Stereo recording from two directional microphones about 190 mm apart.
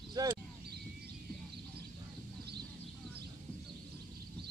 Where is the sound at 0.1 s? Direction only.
20° right (ahead or behind).